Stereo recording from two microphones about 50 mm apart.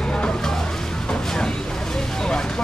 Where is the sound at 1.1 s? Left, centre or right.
Centre.